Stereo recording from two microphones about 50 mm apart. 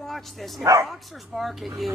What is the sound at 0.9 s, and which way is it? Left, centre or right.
Speech, centre.